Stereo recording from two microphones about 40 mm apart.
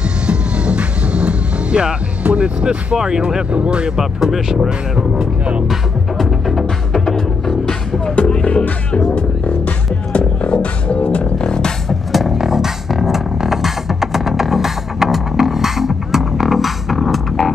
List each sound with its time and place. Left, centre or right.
0.3 s music: right
3.5 s speech: right
3.9 s speech: centre
5.7 s music: centre
6.9 s music: centre
8.3 s music: left
10.1 s music: left
11.9 s music: centre